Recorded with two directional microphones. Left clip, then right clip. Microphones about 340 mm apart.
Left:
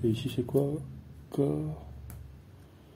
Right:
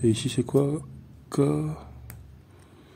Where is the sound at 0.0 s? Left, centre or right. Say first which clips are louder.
Right 6 dB; right.